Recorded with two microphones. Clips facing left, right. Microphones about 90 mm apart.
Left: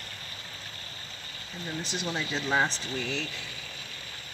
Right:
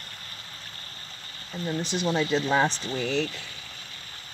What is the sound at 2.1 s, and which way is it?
Speech, 45° right (ahead or behind).